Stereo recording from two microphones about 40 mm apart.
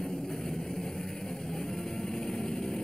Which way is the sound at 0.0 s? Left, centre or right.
Centre.